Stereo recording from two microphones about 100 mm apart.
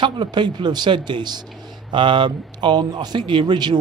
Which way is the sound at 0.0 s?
50° right (ahead or behind).